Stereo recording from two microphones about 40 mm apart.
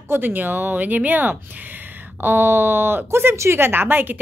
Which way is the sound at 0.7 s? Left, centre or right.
Right.